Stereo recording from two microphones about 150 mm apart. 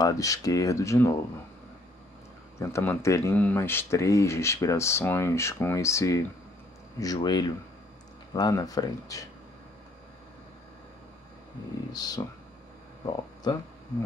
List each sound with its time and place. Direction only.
0.0 s speech: 25° left (ahead or behind)
2.6 s speech: 15° left (ahead or behind)
11.9 s speech: 25° left (ahead or behind)